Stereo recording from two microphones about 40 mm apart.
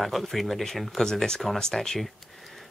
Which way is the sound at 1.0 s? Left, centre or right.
Centre.